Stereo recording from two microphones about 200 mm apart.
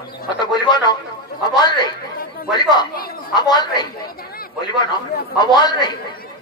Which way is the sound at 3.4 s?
20° left (ahead or behind).